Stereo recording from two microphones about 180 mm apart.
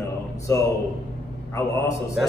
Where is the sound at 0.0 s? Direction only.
20° left (ahead or behind).